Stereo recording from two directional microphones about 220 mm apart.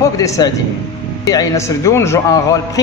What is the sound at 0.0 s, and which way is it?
A man's voice, 15° left (ahead or behind).